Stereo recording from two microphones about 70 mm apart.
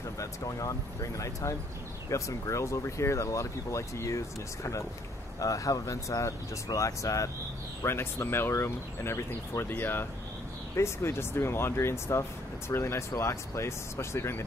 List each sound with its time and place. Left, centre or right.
0.2 s speech: left
5.4 s speech: left
7.8 s speech: left